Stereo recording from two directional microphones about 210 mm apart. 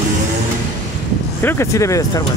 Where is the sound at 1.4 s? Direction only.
10° left (ahead or behind).